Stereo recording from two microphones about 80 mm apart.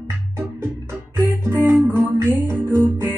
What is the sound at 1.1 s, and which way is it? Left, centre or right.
Music, right.